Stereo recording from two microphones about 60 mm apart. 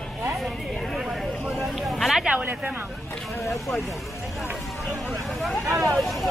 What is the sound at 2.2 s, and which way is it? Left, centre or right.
Speech, right.